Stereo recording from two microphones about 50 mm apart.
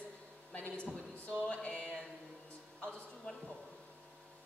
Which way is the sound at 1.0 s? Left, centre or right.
Centre.